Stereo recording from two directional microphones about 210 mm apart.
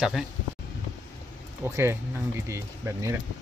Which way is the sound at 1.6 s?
15° right (ahead or behind).